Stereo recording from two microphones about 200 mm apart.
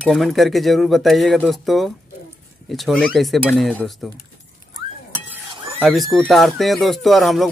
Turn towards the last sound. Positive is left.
turn(degrees=0)  # may be behind; listen again after turning